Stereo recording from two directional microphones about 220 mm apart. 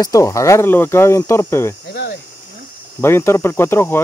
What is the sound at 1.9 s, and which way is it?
Cricket, 45° left (ahead or behind).